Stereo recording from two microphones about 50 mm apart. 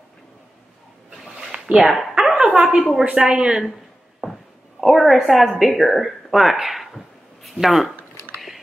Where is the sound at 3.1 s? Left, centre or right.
Centre.